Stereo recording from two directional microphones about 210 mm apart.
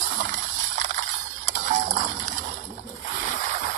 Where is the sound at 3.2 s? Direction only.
35° right (ahead or behind).